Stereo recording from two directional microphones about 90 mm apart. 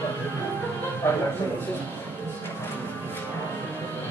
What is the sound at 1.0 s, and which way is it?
Speech, 25° left (ahead or behind).